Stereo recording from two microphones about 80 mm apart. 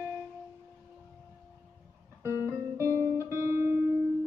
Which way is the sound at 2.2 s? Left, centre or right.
Right.